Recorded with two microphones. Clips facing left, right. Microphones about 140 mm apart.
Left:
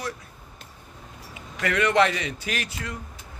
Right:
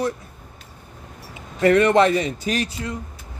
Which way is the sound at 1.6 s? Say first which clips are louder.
Right 6 dB; 35° right (ahead or behind).